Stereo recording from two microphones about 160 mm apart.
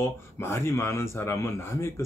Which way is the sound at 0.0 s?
15° left (ahead or behind).